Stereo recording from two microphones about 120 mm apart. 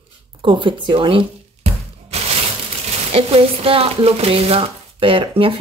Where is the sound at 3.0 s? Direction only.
55° right (ahead or behind).